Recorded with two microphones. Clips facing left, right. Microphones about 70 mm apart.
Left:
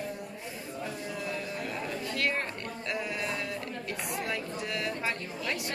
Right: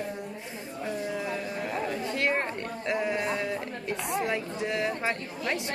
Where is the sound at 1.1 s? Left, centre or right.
Right.